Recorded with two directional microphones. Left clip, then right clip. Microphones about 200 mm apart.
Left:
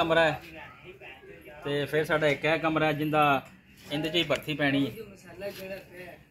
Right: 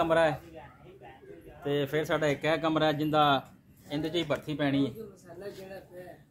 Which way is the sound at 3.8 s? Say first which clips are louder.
Left 3 dB; 20° left (ahead or behind).